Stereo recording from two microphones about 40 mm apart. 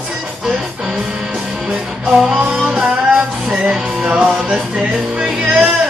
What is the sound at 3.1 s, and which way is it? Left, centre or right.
Music, right.